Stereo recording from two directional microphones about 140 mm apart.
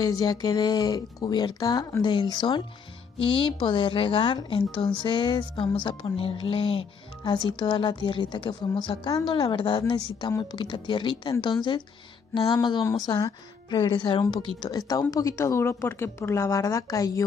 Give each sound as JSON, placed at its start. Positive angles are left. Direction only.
{"t": 0.0, "sound": "speech", "side_deg": 25}
{"t": 12.8, "sound": "speech", "side_deg": 25}